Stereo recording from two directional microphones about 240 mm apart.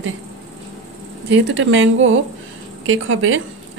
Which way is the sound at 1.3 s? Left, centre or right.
Right.